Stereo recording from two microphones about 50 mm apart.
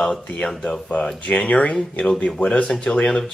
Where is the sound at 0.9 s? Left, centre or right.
Left.